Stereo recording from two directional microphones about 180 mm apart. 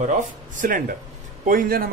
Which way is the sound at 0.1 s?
50° right (ahead or behind).